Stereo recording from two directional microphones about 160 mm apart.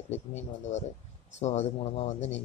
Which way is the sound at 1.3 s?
45° left (ahead or behind).